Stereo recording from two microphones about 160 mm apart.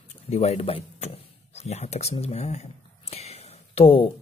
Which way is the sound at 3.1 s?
40° left (ahead or behind).